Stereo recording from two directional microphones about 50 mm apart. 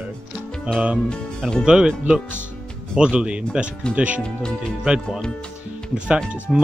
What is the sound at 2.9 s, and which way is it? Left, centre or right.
Speech, centre.